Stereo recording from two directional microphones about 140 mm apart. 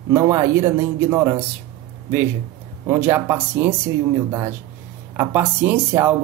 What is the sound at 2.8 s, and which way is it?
Speech, 15° right (ahead or behind).